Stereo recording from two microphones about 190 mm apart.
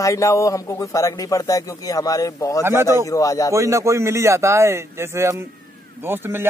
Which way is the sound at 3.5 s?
15° right (ahead or behind).